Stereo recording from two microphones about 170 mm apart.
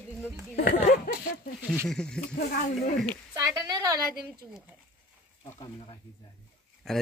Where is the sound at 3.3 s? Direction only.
20° right (ahead or behind).